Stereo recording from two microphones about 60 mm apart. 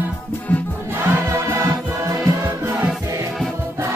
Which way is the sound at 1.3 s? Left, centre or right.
Right.